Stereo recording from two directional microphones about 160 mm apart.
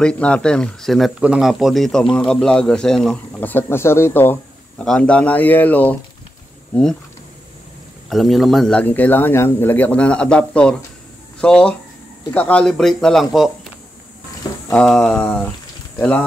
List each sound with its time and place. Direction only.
0.0 s speech: 5° left (ahead or behind)
8.1 s speech: centre (ahead or behind)
14.7 s speech: 5° left (ahead or behind)